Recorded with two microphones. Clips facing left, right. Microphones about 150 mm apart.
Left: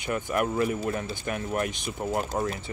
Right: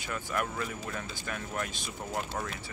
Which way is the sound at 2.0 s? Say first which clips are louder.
Left 7 dB; 35° left (ahead or behind).